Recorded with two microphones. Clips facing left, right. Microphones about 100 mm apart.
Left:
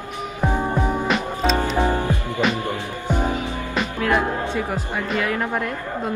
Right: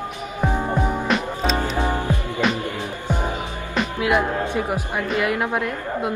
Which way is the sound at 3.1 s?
15° right (ahead or behind).